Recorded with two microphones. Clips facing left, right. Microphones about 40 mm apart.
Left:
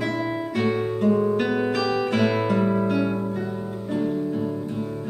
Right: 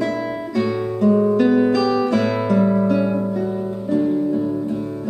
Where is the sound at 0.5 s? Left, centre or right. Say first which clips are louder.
Right 3 dB; left.